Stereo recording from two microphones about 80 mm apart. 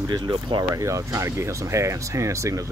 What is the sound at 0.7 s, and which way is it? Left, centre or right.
Speech, right.